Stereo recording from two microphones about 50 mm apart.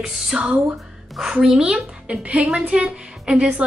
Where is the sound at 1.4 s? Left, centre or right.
Centre.